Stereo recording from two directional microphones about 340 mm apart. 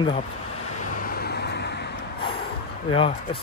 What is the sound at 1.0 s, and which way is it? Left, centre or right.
Vehicle, left.